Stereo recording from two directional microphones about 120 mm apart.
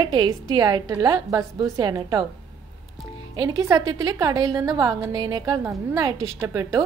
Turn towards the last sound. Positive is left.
turn(degrees=-30)  # may be behind; listen again after turning